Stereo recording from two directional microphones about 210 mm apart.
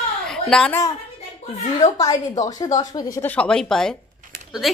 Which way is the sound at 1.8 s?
15° left (ahead or behind).